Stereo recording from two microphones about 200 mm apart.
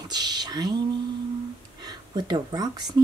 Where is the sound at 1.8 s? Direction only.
20° right (ahead or behind).